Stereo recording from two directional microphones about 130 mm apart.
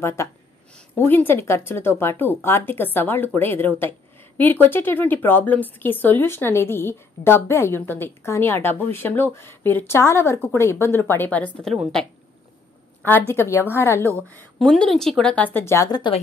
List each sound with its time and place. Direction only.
0.0 s a woman's voice: 20° left (ahead or behind); by 12.1 s centre (ahead or behind)
13.3 s a woman's voice: 20° left (ahead or behind)